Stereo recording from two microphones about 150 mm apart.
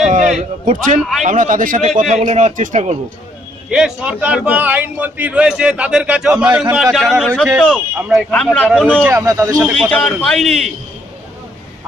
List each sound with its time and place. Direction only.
0.0 s a sound: 55° right (ahead or behind)
0.4 s a man's voice: 60° right (ahead or behind)
3.7 s a man's voice: 5° right (ahead or behind)
8.6 s a man's voice: 10° right (ahead or behind)
9.1 s a man's voice: 20° right (ahead or behind)
9.6 s a man's voice: centre (ahead or behind)